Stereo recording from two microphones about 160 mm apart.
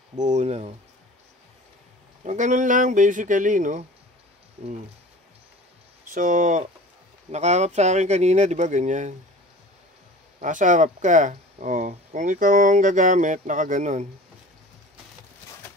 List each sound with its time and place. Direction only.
0.1 s speech: 50° right (ahead or behind)
2.2 s speech: 50° right (ahead or behind)
6.1 s speech: 55° right (ahead or behind)
10.4 s speech: 50° right (ahead or behind)